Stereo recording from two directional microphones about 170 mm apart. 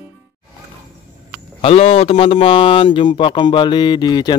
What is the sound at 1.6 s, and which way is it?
A man's voice, 35° left (ahead or behind).